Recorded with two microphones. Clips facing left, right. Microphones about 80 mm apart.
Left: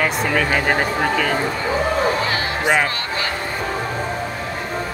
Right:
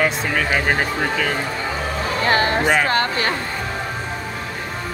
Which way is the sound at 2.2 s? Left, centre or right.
Right.